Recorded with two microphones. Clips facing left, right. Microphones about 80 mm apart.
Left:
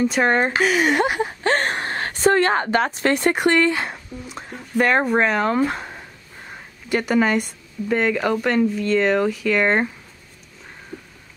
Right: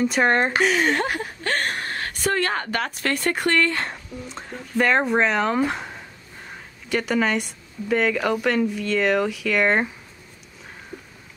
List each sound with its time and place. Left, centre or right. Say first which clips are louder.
0.0 s speech: left 1 dB; centre